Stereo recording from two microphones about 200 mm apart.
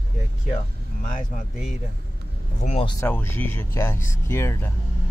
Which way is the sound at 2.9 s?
10° left (ahead or behind).